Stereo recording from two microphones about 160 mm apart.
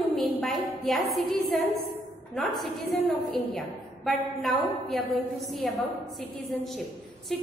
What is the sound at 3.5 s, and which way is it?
A woman's voice, centre (ahead or behind).